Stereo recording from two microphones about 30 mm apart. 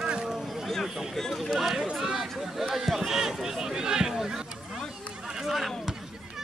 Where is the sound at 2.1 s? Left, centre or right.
Centre.